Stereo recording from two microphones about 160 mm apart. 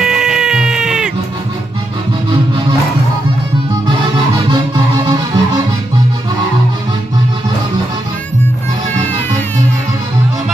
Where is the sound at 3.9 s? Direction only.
30° right (ahead or behind).